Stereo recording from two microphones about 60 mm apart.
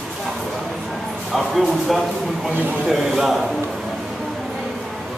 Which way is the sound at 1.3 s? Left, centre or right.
Centre.